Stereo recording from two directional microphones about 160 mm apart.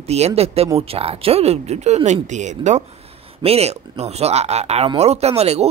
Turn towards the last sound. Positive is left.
turn(degrees=-40)  # may be behind; listen again after turning